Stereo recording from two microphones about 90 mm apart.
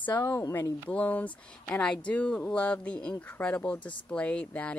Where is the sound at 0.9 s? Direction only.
15° left (ahead or behind).